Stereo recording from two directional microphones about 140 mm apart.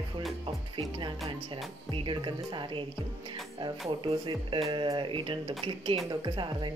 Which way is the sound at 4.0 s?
35° right (ahead or behind).